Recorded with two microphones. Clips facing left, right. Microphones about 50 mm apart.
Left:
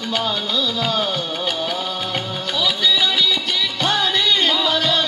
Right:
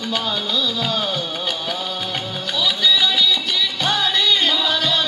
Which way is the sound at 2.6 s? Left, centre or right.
Left.